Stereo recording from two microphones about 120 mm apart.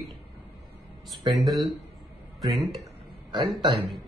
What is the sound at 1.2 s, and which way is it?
Speech, 35° right (ahead or behind).